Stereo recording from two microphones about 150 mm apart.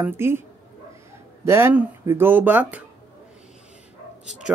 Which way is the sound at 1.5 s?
15° right (ahead or behind).